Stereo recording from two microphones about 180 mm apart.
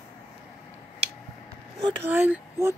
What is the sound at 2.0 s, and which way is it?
Speech, 10° right (ahead or behind).